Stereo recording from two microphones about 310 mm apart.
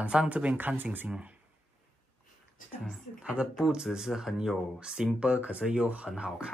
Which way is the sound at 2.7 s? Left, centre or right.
Centre.